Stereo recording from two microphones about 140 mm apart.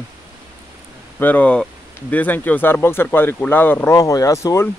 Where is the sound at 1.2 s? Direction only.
10° left (ahead or behind).